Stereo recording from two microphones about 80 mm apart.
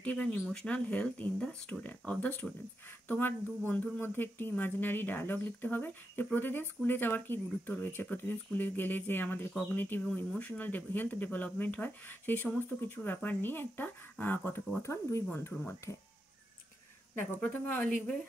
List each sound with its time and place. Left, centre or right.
0.0 s speech: centre
14.8 s speech: left
15.5 s speech: left
17.2 s speech: left